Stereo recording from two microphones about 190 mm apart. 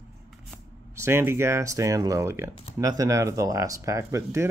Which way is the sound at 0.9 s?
15° right (ahead or behind).